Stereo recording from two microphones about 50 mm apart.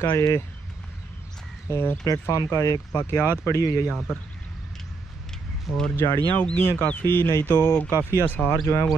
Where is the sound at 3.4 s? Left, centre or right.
Left.